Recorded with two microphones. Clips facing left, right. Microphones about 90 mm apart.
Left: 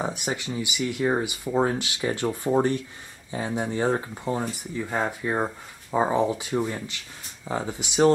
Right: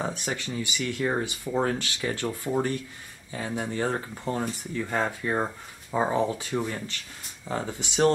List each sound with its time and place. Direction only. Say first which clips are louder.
0.0 s speech: left 2 dB; 15° left (ahead or behind)